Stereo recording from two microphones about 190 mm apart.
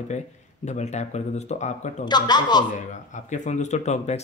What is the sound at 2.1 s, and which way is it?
Speech, 20° left (ahead or behind).